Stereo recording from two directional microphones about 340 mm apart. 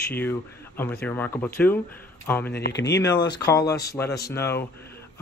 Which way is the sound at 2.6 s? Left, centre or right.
Left.